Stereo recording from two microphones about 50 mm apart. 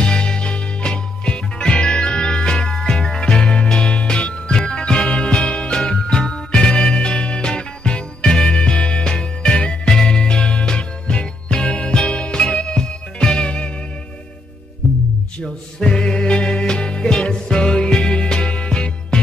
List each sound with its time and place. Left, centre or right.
0.0 s music: centre
15.4 s music: centre